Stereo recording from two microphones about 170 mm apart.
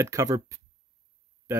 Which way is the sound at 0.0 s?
20° right (ahead or behind).